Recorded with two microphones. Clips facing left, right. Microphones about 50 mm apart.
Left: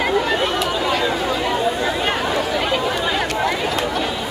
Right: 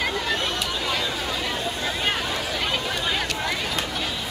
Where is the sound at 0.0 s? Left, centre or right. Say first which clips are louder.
Left 7 dB; centre.